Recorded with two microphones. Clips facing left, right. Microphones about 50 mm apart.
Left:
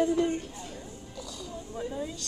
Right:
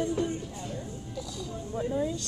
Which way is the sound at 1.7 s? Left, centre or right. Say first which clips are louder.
Right 6 dB; centre.